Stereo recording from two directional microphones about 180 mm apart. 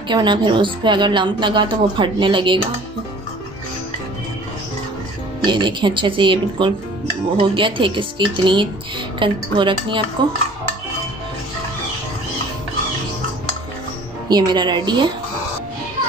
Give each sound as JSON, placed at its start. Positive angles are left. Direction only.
{"t": 0.1, "sound": "a woman's voice", "side_deg": -25}
{"t": 5.4, "sound": "a woman's voice", "side_deg": -25}
{"t": 14.3, "sound": "a woman's voice", "side_deg": -25}